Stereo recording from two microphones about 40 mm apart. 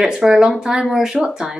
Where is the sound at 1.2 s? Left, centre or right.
Right.